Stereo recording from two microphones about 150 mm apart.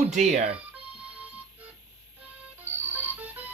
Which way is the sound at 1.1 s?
10° right (ahead or behind).